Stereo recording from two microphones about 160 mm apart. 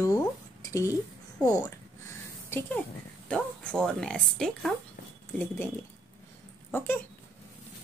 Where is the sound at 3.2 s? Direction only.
5° left (ahead or behind).